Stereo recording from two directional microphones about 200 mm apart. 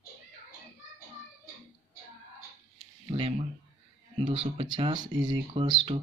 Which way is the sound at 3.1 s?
30° right (ahead or behind).